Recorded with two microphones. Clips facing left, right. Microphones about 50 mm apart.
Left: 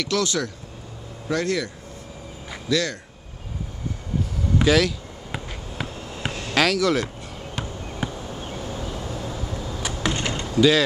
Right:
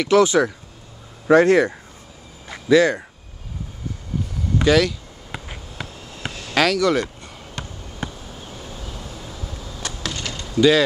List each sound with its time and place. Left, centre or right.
0.0 s speech: centre
2.7 s speech: right
4.6 s a sound: centre
6.5 s speech: centre
7.6 s basketball bounce: centre
8.0 s a sound: centre
8.5 s vehicle: centre
10.0 s door: left
10.5 s speech: centre